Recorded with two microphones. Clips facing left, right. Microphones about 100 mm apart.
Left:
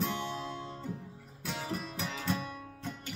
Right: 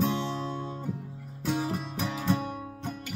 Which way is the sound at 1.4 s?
20° right (ahead or behind).